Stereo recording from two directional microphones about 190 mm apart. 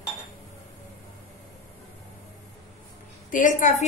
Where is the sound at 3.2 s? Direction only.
45° left (ahead or behind).